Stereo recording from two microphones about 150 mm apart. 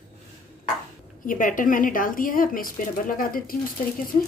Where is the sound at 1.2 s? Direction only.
65° left (ahead or behind).